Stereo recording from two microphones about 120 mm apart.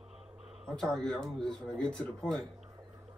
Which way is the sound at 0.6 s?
5° left (ahead or behind).